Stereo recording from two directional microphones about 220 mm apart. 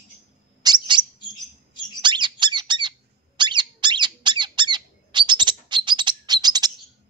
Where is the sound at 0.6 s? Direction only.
20° right (ahead or behind).